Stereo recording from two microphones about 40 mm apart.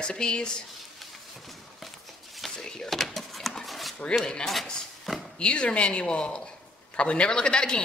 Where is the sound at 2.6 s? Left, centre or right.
Centre.